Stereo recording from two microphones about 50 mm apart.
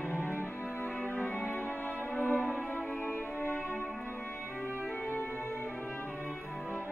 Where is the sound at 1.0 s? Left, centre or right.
Left.